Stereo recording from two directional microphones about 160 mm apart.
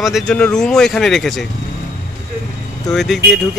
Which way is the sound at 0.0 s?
Centre (ahead or behind).